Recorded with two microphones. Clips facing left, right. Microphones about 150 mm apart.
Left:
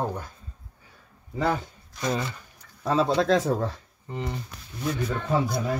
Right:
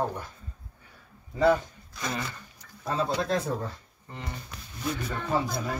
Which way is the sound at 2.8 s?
90° left.